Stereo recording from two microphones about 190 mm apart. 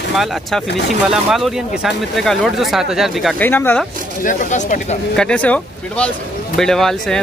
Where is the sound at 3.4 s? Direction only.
10° left (ahead or behind).